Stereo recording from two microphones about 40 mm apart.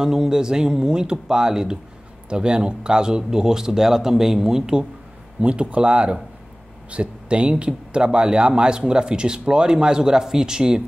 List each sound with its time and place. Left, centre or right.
0.0 s speech: centre
5.4 s speech: right; by 10.8 s centre